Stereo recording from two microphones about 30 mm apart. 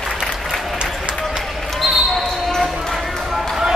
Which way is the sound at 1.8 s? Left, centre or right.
Centre.